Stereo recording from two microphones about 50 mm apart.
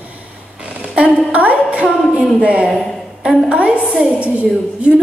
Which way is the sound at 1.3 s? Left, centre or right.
Right.